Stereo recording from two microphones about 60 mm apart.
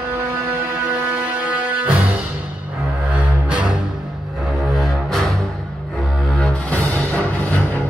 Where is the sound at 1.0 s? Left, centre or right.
Right; by 5.4 s centre.